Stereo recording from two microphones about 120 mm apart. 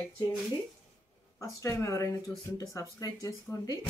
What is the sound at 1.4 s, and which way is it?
Speech, 25° left (ahead or behind).